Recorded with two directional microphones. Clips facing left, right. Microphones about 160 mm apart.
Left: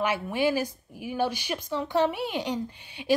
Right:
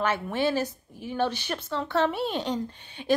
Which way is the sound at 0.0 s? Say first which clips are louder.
Even; 10° left (ahead or behind).